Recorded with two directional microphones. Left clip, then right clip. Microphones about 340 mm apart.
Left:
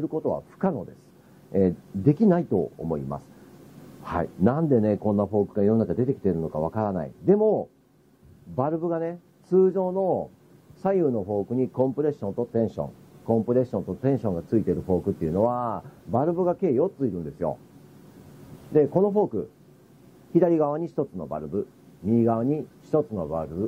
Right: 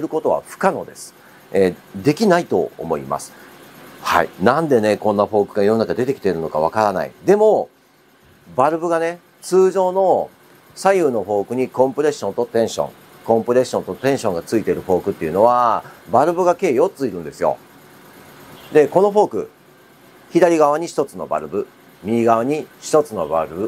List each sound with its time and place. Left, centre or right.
0.1 s speech: centre
2.5 s speech: right
5.0 s speech: right
5.9 s speech: centre
8.5 s speech: centre
10.8 s speech: centre
12.5 s speech: centre
12.8 s speech: centre
18.7 s speech: centre
20.3 s speech: centre